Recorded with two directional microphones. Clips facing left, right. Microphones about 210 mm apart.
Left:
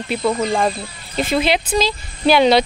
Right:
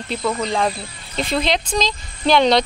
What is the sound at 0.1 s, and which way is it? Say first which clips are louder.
Speech: left 3 dB; 15° left (ahead or behind).